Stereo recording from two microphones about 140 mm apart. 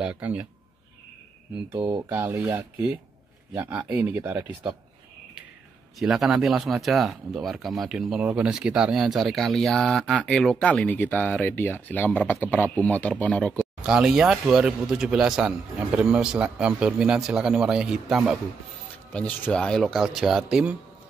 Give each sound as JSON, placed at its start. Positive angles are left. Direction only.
{"t": 0.0, "sound": "speech", "side_deg": -10}
{"t": 1.7, "sound": "speech", "side_deg": -25}
{"t": 5.9, "sound": "speech", "side_deg": 0}
{"t": 13.8, "sound": "speech", "side_deg": -5}
{"t": 19.1, "sound": "speech", "side_deg": 10}